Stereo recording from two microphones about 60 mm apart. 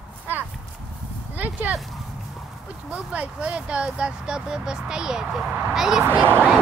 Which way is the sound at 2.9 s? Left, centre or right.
Right.